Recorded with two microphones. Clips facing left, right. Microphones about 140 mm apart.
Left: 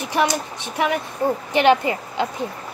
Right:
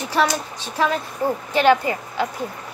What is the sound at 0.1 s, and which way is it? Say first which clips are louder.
A child's voice: even; 15° left (ahead or behind).